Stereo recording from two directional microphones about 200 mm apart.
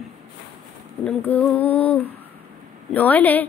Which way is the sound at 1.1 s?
5° left (ahead or behind).